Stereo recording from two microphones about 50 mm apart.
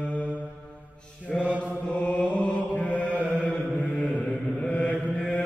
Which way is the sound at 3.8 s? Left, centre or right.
Left.